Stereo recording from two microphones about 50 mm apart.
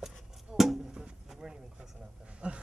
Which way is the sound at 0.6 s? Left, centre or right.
Centre.